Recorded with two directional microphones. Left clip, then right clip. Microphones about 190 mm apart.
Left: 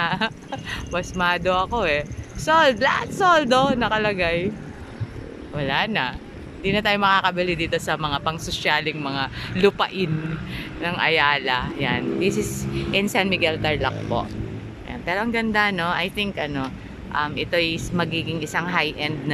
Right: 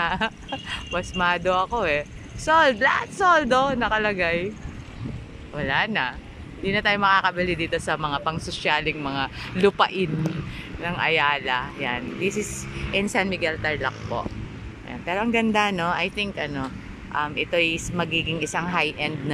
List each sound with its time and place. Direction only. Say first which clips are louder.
0.0 s speech: left 1 dB; centre (ahead or behind)
5.6 s speech: left 1 dB; centre (ahead or behind)